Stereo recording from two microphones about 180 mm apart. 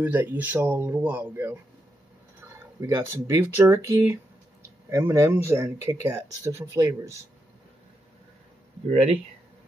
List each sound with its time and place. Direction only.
0.0 s speech: 10° right (ahead or behind)